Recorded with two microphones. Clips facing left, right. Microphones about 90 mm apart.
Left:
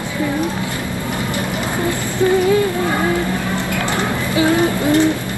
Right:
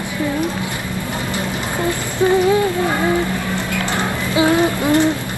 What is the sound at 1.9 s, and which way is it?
Speech, 20° right (ahead or behind).